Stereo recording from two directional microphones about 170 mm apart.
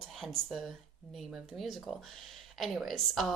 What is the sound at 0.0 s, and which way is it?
Speech, centre (ahead or behind).